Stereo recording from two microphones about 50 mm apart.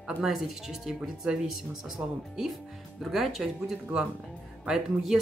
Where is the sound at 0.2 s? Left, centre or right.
Centre.